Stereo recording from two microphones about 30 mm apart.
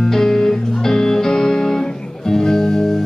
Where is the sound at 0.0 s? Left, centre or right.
Centre.